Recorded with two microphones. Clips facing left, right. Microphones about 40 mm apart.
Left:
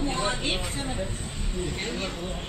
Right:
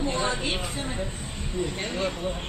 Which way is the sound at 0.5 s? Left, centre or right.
Centre.